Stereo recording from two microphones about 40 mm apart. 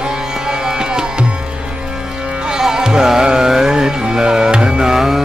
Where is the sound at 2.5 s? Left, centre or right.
Centre.